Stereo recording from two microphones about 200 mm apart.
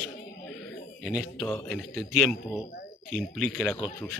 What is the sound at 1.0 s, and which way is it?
A man's voice, 5° left (ahead or behind).